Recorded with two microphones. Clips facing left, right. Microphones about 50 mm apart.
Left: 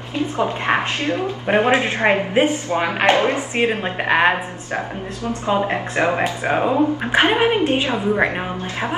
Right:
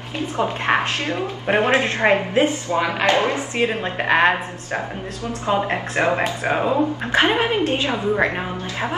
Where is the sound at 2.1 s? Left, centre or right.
Left.